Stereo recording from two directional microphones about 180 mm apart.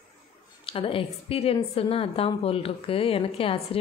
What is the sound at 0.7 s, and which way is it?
A woman's voice, 30° left (ahead or behind).